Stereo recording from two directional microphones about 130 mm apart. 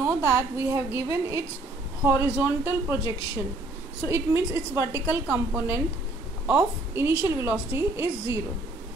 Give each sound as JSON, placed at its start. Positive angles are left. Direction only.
{"t": 0.3, "sound": "a woman's voice", "side_deg": -20}